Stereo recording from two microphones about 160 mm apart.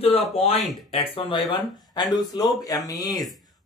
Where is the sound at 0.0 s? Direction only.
40° left (ahead or behind).